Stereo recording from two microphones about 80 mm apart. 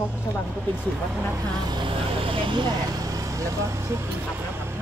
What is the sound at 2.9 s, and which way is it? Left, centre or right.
Vehicle, right.